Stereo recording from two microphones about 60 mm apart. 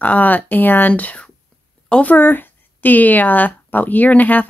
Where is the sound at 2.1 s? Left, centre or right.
Left.